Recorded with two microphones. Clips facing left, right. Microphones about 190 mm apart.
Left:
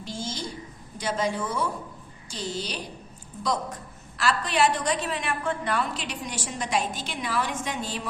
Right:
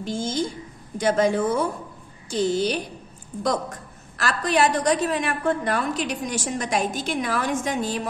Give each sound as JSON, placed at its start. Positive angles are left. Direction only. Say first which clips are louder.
{"t": 0.0, "sound": "a woman's voice", "louder": "right 8 dB", "side_deg": -50}
{"t": 4.2, "sound": "a woman's voice", "louder": "right 2 dB", "side_deg": -45}